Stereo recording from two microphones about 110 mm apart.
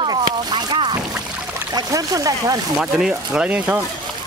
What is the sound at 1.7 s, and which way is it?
Speech, 30° right (ahead or behind).